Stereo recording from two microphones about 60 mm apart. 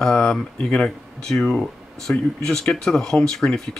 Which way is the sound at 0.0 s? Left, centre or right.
Centre.